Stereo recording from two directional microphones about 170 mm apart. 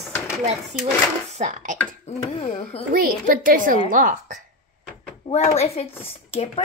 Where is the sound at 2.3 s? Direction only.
40° left (ahead or behind).